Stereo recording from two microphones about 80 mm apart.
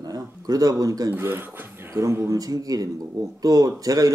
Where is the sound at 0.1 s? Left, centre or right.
Right.